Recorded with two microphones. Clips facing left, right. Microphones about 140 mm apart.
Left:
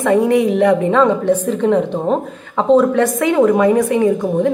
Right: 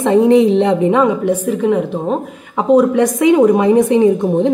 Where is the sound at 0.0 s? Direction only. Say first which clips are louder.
Right 3 dB; 25° right (ahead or behind).